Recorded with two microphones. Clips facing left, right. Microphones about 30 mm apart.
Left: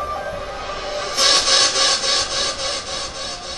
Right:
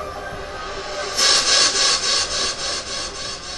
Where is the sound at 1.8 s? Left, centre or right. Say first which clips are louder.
Left 1 dB; centre.